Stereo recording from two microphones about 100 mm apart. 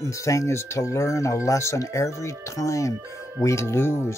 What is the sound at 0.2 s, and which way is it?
Speech, 30° left (ahead or behind).